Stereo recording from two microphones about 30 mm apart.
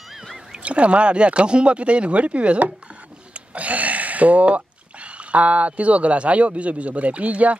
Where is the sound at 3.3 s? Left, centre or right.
Right.